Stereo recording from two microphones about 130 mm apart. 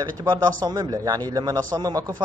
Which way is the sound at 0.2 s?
30° right (ahead or behind).